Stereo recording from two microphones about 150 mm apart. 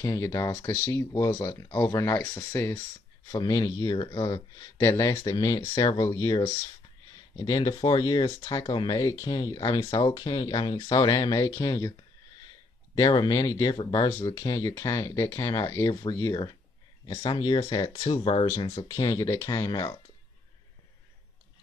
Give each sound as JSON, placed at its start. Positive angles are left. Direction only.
{"t": 0.0, "sound": "speech", "side_deg": 20}
{"t": 17.2, "sound": "speech", "side_deg": 35}